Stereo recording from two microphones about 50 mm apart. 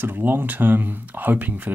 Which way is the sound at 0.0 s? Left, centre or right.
Right.